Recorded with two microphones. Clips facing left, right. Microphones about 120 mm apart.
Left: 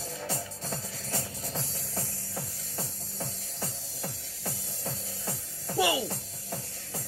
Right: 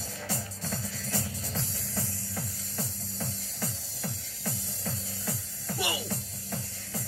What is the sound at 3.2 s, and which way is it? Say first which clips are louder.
Music: right 1 dB; 30° left (ahead or behind).